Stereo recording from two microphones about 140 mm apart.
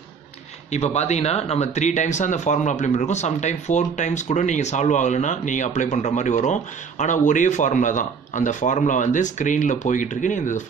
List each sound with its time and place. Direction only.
0.7 s speech: 50° left (ahead or behind)